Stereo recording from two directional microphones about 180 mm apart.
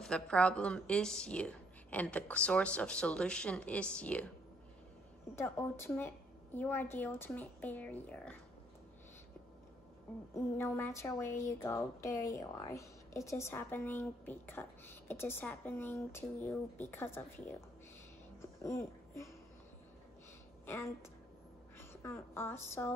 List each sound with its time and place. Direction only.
0.0 s a woman's voice: 5° left (ahead or behind)
5.3 s a woman's voice: 15° left (ahead or behind)
10.3 s a woman's voice: 15° left (ahead or behind)
20.6 s a woman's voice: 15° left (ahead or behind)